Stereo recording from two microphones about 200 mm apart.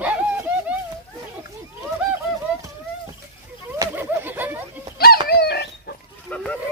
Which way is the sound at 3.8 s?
10° right (ahead or behind).